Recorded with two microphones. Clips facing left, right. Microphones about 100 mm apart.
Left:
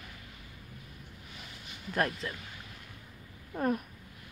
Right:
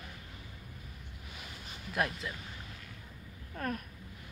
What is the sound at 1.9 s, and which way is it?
Speech, 5° right (ahead or behind).